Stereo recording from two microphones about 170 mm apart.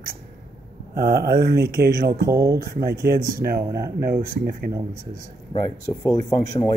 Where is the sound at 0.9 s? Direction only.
65° right (ahead or behind).